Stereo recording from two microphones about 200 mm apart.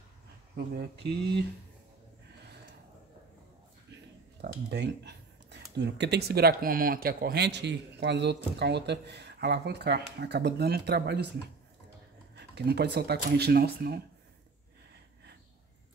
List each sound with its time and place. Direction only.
0.7 s speech: 55° right (ahead or behind)
4.4 s speech: 55° right (ahead or behind)
12.4 s speech: 55° right (ahead or behind)